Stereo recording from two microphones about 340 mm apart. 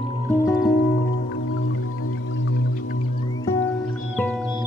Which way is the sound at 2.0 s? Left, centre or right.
Left.